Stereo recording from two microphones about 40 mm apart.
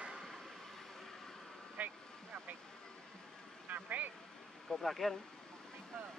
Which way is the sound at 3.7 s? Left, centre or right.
Right.